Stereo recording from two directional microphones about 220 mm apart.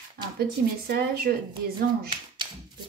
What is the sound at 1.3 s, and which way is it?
Speech, 45° right (ahead or behind).